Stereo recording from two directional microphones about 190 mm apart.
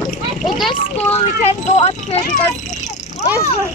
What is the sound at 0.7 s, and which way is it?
Speech, 35° left (ahead or behind).